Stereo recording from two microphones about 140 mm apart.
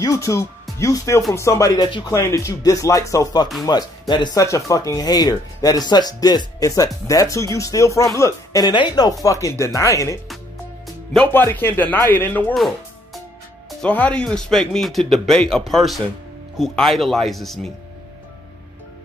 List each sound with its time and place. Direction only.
0.0 s speech: 25° left (ahead or behind)
11.1 s a man's voice: 15° left (ahead or behind)
12.5 s music: centre (ahead or behind)
13.7 s speech: 5° left (ahead or behind)